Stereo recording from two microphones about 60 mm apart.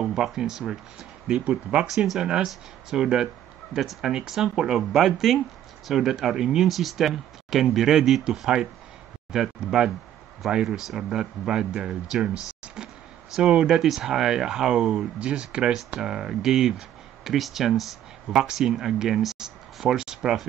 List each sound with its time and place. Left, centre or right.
0.0 s speech: centre